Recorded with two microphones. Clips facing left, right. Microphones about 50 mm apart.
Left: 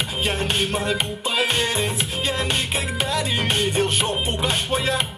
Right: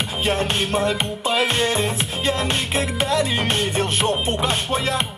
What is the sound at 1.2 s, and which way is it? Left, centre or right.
Music, right.